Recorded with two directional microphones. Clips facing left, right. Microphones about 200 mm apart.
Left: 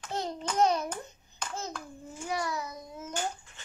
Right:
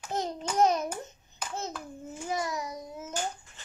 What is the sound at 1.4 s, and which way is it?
Hands, 5° right (ahead or behind).